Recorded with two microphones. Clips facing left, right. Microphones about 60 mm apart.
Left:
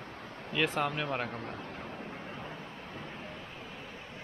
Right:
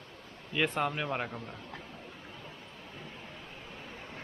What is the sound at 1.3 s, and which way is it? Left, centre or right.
Speech, left.